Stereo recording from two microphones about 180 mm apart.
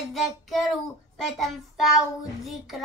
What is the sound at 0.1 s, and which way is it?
Child singing, centre (ahead or behind).